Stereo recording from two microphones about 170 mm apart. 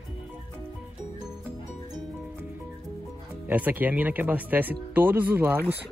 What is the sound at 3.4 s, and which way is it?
Speech, 10° right (ahead or behind).